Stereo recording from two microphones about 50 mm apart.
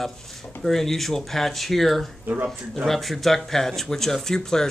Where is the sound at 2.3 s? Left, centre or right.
Right.